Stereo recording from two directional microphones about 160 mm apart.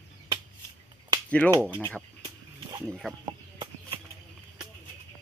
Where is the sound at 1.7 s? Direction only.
15° left (ahead or behind).